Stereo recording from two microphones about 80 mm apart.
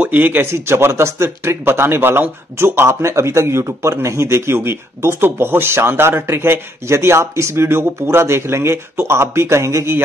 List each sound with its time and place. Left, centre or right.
0.0 s speech: right